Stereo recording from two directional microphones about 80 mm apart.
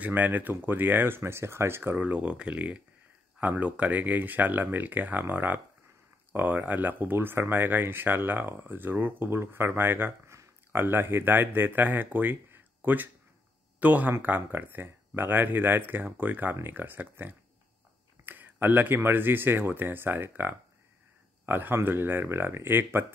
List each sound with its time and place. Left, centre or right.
0.0 s speech: right
2.0 s speech: centre